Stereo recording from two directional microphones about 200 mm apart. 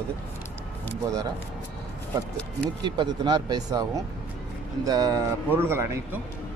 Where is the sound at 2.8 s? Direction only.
20° right (ahead or behind).